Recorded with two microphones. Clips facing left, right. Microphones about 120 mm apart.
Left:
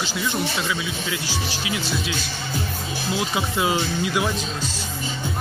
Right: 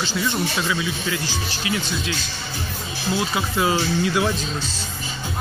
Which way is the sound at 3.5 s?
15° left (ahead or behind).